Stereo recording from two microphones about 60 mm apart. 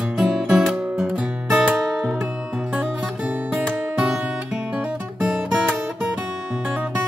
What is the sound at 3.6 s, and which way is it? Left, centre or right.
Music, centre.